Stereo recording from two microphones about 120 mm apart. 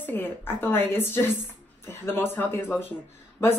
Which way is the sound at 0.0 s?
15° left (ahead or behind).